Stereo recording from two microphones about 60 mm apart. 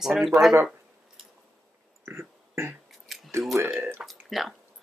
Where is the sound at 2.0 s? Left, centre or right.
Right.